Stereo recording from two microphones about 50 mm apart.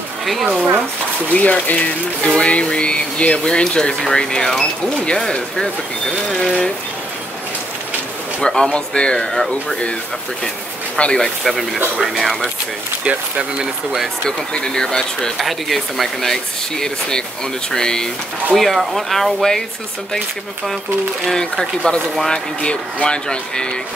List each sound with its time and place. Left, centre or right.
0.2 s speech: centre
1.3 s speech: left
8.4 s speech: centre
9.2 s speech: centre
11.0 s speech: centre
11.4 s speech: centre
13.0 s speech: right
13.6 s speech: centre
14.5 s speech: centre
15.3 s speech: centre
17.7 s speech: centre
21.3 s speech: centre